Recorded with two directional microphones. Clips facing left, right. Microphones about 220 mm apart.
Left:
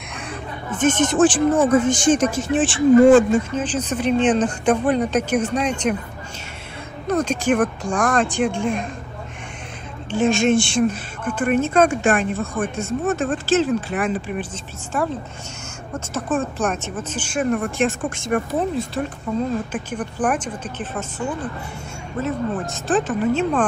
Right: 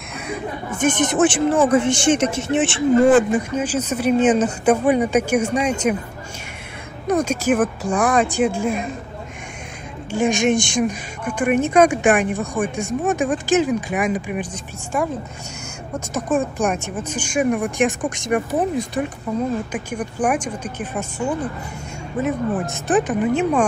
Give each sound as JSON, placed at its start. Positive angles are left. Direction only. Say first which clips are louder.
{"t": 0.3, "sound": "a woman's voice", "louder": "right 4 dB", "side_deg": -10}
{"t": 7.1, "sound": "a woman's voice", "louder": "right 1 dB", "side_deg": -10}
{"t": 10.1, "sound": "a woman's voice", "louder": "left 1 dB", "side_deg": -15}
{"t": 16.1, "sound": "a woman's voice", "louder": "right 2 dB", "side_deg": -10}
{"t": 22.2, "sound": "a woman's voice", "louder": "right 2 dB", "side_deg": -15}